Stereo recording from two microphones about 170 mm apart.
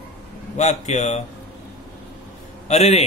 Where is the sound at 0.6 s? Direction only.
45° left (ahead or behind).